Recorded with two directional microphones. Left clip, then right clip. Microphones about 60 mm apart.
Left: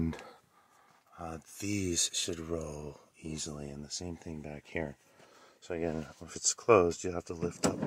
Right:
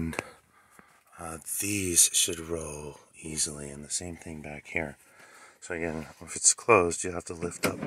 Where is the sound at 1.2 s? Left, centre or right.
Centre.